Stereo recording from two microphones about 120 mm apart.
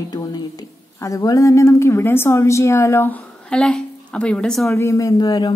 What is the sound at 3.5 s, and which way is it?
A woman's voice, 10° left (ahead or behind).